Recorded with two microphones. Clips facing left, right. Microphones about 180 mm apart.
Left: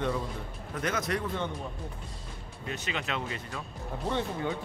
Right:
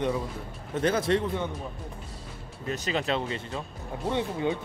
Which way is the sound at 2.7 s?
35° right (ahead or behind).